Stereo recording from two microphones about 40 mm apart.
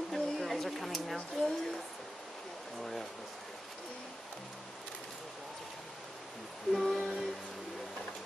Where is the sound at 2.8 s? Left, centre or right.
Centre.